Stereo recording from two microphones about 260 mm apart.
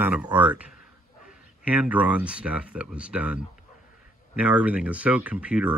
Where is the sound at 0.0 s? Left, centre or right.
Centre.